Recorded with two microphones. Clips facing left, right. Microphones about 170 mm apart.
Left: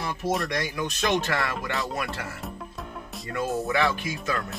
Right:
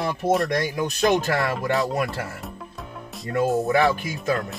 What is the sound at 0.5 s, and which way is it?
Speech, 45° right (ahead or behind).